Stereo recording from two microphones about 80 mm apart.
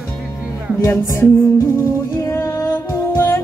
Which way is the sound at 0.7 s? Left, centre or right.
Left.